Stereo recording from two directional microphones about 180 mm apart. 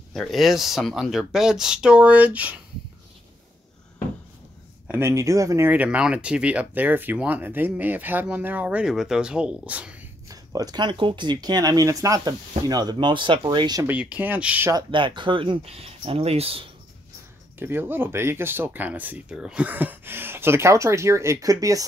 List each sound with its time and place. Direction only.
0.1 s speech: centre (ahead or behind)
4.8 s speech: 15° right (ahead or behind)
10.2 s speech: 20° right (ahead or behind)
13.8 s speech: 5° right (ahead or behind)
14.7 s speech: 25° right (ahead or behind)
17.6 s speech: 10° right (ahead or behind)